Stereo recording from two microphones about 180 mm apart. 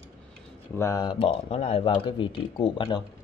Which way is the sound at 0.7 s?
20° left (ahead or behind).